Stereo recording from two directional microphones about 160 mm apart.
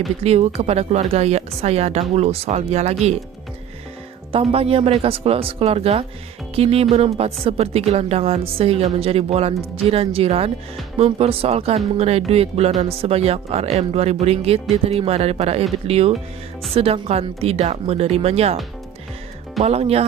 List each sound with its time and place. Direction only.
0.2 s speech: 40° right (ahead or behind)
4.3 s speech: 35° right (ahead or behind)
19.6 s speech: 40° right (ahead or behind)